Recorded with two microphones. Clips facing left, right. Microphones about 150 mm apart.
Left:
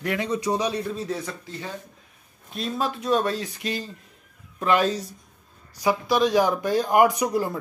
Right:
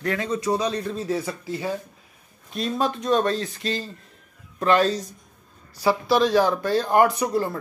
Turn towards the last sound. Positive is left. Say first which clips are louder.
# even
turn(degrees=15)  # may be behind; listen again after turning